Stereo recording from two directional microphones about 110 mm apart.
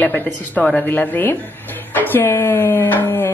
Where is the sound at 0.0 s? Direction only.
15° left (ahead or behind).